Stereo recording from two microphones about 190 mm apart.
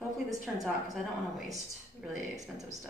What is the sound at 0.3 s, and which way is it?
Speech, 20° right (ahead or behind).